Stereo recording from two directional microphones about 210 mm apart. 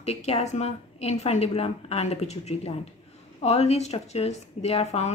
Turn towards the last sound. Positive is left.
turn(degrees=30)  # may be behind; listen again after turning